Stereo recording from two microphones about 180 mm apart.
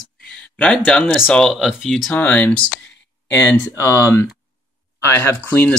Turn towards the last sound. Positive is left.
turn(degrees=10)  # may be behind; listen again after turning